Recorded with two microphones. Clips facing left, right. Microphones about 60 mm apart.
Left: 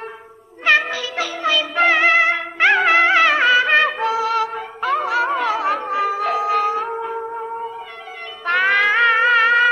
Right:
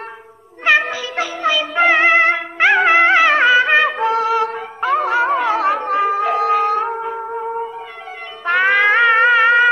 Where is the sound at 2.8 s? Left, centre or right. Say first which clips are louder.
Right 4 dB; right.